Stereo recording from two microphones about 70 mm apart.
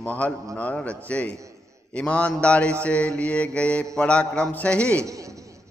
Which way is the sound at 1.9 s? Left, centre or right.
Centre.